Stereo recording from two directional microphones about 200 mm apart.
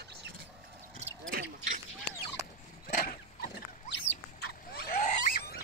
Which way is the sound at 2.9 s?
40° left (ahead or behind).